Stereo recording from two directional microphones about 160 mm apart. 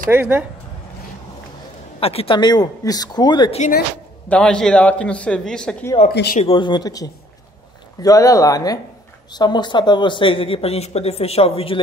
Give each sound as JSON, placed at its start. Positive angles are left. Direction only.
{"t": 0.1, "sound": "speech", "side_deg": -10}
{"t": 2.0, "sound": "speech", "side_deg": 40}
{"t": 4.3, "sound": "a man's voice", "side_deg": 5}
{"t": 6.0, "sound": "speech", "side_deg": 70}
{"t": 6.4, "sound": "a woman's voice", "side_deg": 30}